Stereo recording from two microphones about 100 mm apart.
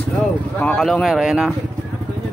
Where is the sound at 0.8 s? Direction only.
Centre (ahead or behind).